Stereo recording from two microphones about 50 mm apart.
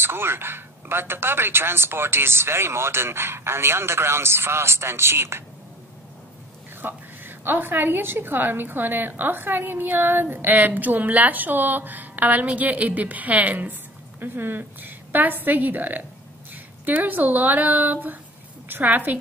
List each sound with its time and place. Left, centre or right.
0.0 s speech: right
6.8 s a woman's voice: right